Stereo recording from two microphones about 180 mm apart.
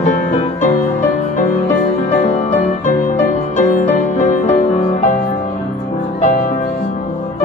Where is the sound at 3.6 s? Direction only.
40° left (ahead or behind).